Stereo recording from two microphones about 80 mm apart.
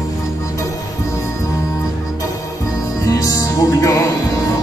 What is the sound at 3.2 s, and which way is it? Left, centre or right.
Music, left.